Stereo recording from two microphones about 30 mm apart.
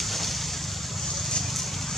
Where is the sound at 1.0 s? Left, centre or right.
Centre.